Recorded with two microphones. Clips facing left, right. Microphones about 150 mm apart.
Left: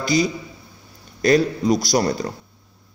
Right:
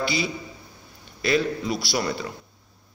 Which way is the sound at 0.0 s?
40° left (ahead or behind).